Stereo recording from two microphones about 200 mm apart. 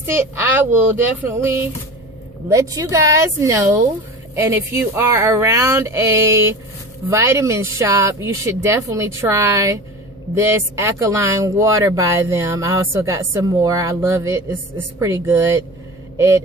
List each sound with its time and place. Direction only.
0.0 s speech: 10° right (ahead or behind)